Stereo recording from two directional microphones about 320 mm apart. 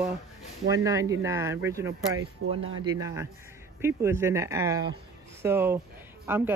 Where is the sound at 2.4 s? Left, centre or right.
Right.